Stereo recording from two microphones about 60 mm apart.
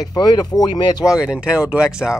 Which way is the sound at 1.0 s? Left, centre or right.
Centre.